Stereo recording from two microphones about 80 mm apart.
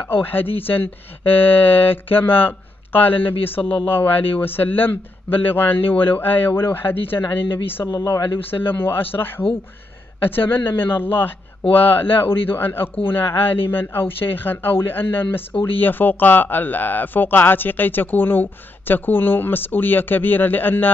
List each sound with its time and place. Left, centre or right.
0.0 s speech: left
7.7 s speech: left
8.5 s speech: left